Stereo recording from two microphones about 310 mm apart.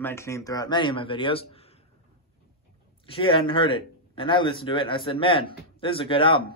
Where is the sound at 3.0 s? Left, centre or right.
Centre.